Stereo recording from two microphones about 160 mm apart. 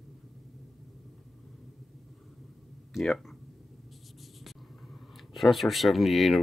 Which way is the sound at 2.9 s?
Centre (ahead or behind).